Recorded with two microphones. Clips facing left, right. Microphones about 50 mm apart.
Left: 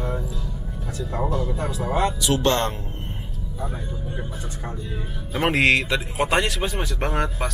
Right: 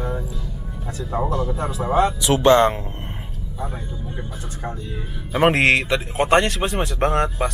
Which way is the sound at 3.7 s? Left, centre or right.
Centre.